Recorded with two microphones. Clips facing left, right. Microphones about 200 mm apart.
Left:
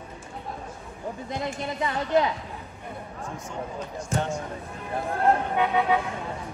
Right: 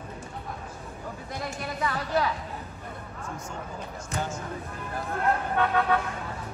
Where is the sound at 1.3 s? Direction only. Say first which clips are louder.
Left 3 dB; 20° left (ahead or behind).